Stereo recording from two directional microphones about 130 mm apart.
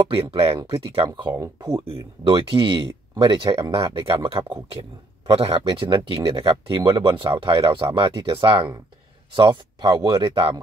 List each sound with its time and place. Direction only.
0.1 s speech: 45° right (ahead or behind)